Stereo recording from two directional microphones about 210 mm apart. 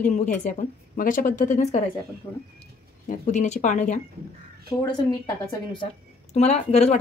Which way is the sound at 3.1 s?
35° left (ahead or behind).